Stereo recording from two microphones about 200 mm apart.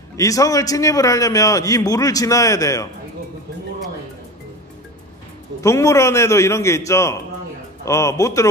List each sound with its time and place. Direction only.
0.2 s a man's voice: 15° left (ahead or behind)
5.6 s a man's voice: 15° left (ahead or behind)